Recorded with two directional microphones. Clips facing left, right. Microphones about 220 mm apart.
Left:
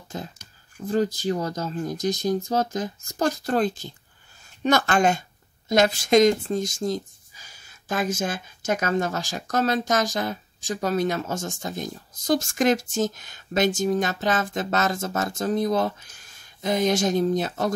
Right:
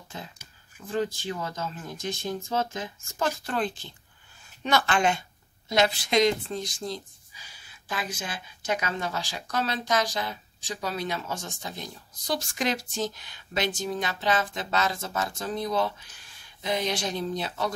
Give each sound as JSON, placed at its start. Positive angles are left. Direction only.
{"t": 0.1, "sound": "speech", "side_deg": 40}